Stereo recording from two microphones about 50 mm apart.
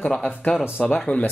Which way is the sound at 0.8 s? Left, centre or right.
Left.